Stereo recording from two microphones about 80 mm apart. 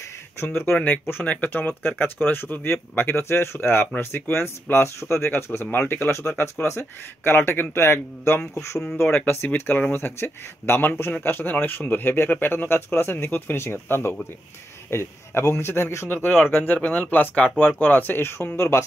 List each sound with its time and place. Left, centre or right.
0.7 s speech: centre; by 18.9 s left